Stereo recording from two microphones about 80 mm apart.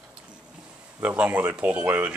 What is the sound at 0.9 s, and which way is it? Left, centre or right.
Speech, right.